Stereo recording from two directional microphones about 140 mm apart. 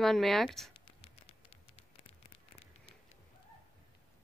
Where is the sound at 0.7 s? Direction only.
40° left (ahead or behind).